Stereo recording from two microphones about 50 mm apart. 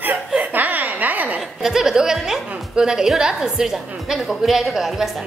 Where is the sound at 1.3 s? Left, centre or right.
Centre.